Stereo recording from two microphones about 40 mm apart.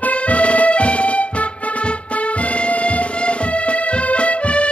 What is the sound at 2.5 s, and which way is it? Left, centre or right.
Music, left.